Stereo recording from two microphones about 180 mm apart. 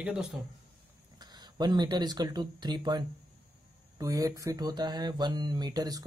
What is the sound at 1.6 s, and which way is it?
Speech, 25° right (ahead or behind).